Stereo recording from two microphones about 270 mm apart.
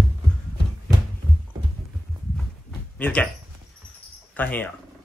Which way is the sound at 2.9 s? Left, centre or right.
Centre.